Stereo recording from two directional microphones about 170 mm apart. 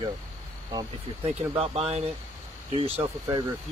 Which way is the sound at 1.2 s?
35° right (ahead or behind).